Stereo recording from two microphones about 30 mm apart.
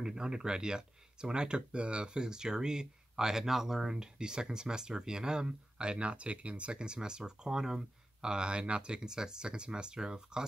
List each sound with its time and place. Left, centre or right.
0.0 s speech: right
3.9 s speech: right